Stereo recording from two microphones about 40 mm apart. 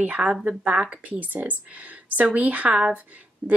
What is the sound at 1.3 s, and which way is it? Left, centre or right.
Speech, right.